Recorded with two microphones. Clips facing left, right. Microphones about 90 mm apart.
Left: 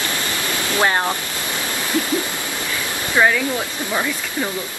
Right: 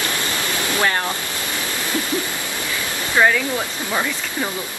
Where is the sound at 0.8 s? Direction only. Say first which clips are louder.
Left 3 dB; 25° left (ahead or behind).